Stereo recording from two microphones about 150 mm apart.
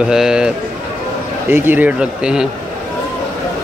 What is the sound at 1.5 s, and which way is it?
Speech, 15° right (ahead or behind).